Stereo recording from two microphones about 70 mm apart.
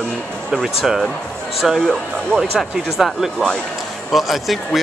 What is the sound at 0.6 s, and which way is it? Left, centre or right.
Speech, centre.